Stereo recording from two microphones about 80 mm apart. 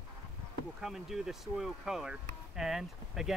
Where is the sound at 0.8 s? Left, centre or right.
Centre.